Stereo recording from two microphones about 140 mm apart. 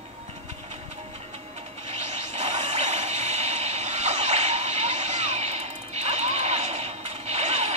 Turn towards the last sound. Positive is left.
turn(degrees=-50)  # may be behind; listen again after turning